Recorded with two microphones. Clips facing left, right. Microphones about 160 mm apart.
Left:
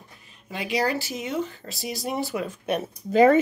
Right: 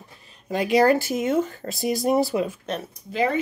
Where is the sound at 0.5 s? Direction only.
45° right (ahead or behind).